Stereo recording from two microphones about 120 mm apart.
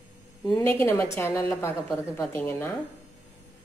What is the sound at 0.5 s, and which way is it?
A woman's voice, 15° left (ahead or behind).